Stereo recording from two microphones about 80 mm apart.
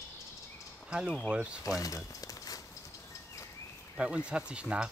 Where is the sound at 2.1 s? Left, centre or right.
Left.